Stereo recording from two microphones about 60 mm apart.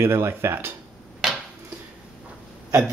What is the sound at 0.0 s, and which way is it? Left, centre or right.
Speech, right.